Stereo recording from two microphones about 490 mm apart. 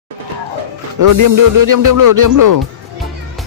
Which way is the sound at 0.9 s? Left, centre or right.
Right.